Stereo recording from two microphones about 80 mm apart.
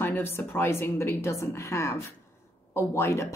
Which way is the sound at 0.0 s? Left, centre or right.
Left.